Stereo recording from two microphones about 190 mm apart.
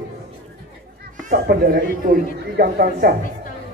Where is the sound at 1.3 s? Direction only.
45° right (ahead or behind).